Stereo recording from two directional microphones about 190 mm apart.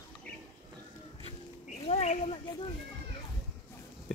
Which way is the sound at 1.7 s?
35° left (ahead or behind).